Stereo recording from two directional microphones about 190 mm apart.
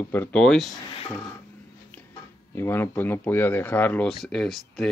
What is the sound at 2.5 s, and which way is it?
Speech, 10° left (ahead or behind).